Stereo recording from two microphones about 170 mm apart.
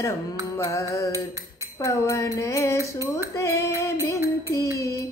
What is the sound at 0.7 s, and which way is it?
Music, 15° left (ahead or behind).